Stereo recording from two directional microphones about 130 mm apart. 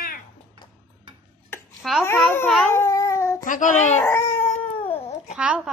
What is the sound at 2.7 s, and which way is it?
Cat, 20° left (ahead or behind).